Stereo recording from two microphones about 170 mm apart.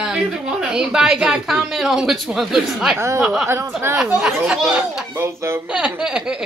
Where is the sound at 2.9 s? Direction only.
15° right (ahead or behind).